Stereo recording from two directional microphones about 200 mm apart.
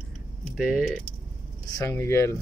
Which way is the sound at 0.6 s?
5° right (ahead or behind).